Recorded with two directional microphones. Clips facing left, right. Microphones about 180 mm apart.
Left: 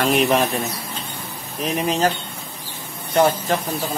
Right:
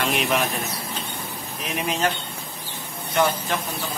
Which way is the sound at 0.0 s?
40° left (ahead or behind).